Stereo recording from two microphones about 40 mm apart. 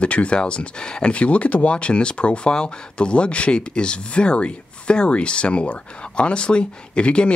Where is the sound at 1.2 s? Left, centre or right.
Left.